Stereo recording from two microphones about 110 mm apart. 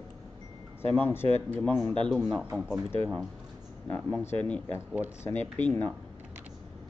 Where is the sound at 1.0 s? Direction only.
20° left (ahead or behind).